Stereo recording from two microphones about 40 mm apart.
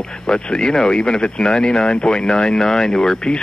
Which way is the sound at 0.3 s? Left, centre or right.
Left.